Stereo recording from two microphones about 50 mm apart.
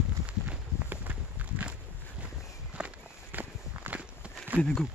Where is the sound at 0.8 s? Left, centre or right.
Right.